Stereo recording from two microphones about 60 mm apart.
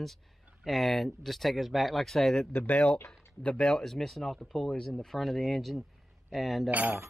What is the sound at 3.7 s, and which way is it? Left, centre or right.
Speech, centre.